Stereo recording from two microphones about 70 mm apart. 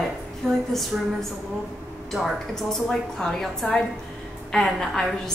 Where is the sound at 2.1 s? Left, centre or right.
Centre.